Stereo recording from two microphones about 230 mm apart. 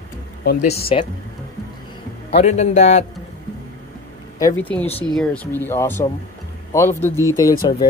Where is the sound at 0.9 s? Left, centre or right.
Left.